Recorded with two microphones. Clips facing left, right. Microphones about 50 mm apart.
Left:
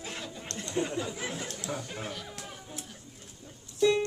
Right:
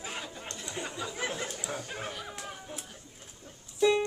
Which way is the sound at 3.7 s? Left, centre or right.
Centre.